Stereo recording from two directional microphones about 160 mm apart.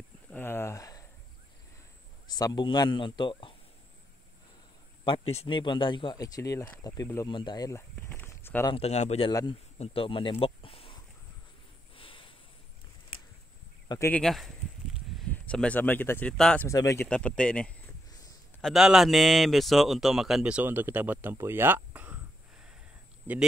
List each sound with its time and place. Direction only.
0.3 s a sound: 15° left (ahead or behind)
2.3 s speech: 25° left (ahead or behind)
5.0 s speech: 35° left (ahead or behind); by 8.6 s 15° left (ahead or behind)
8.6 s speech: 40° left (ahead or behind)
9.3 s speech: 20° left (ahead or behind)
9.8 s speech: 35° left (ahead or behind)
10.4 s a sound: 35° left (ahead or behind)
13.8 s speech: 15° left (ahead or behind)
14.2 s a sound: centre (ahead or behind)
15.2 s speech: 5° left (ahead or behind)
16.6 s speech: 20° left (ahead or behind)
17.1 s a man's voice: 5° left (ahead or behind); by 23.4 s 10° right (ahead or behind)